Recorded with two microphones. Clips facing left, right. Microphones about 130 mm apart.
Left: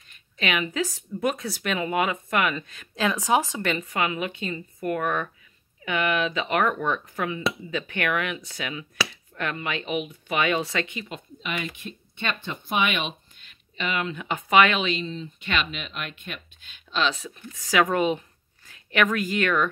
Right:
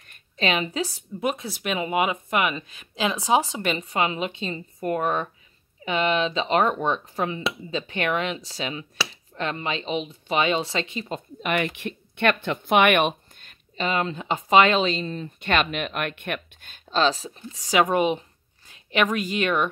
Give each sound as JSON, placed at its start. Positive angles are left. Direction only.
{"t": 0.4, "sound": "speech", "side_deg": -30}
{"t": 11.4, "sound": "speech", "side_deg": -60}
{"t": 15.0, "sound": "speech", "side_deg": -50}
{"t": 16.7, "sound": "a woman's voice", "side_deg": -40}